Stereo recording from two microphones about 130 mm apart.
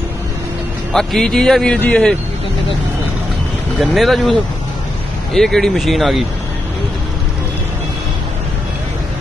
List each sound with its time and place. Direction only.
0.9 s a man's voice: 5° left (ahead or behind)
3.8 s a man's voice: centre (ahead or behind)